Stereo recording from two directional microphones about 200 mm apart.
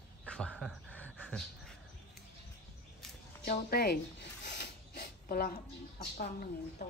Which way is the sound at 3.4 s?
50° left (ahead or behind).